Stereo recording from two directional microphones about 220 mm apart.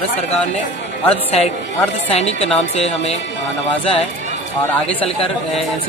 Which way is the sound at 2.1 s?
30° left (ahead or behind).